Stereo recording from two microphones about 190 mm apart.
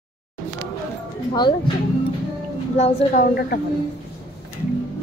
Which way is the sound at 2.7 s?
40° left (ahead or behind).